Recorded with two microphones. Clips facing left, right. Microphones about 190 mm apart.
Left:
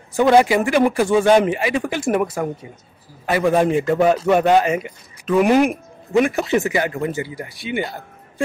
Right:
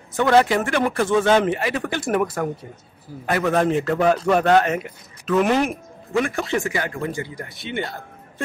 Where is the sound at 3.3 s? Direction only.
10° left (ahead or behind).